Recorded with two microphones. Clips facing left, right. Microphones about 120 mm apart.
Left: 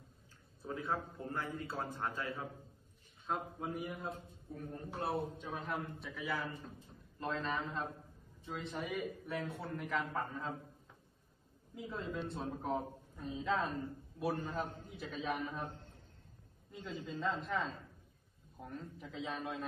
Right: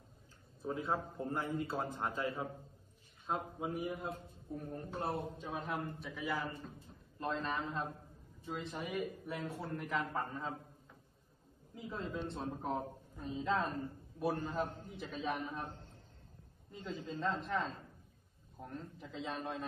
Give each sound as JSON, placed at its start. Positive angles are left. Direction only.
{"t": 0.6, "sound": "a man's voice", "side_deg": -20}
{"t": 3.3, "sound": "a man's voice", "side_deg": 0}
{"t": 11.7, "sound": "a man's voice", "side_deg": 0}
{"t": 16.7, "sound": "a man's voice", "side_deg": 0}